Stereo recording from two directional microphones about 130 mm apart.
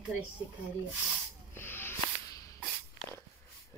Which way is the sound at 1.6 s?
15° left (ahead or behind).